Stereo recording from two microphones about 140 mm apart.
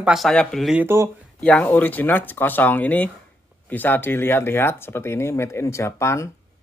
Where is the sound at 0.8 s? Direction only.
20° right (ahead or behind).